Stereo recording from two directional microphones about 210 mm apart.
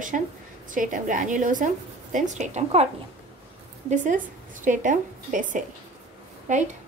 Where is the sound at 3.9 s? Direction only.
40° right (ahead or behind).